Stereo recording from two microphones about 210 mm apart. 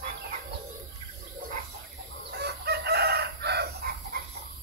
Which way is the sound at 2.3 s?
50° right (ahead or behind).